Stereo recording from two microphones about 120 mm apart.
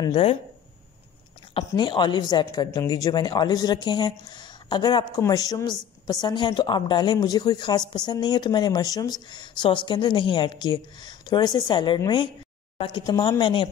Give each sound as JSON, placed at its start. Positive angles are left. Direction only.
{"t": 0.1, "sound": "speech", "side_deg": 55}
{"t": 1.8, "sound": "speech", "side_deg": 40}
{"t": 12.7, "sound": "speech", "side_deg": 50}
{"t": 13.0, "sound": "speech", "side_deg": 30}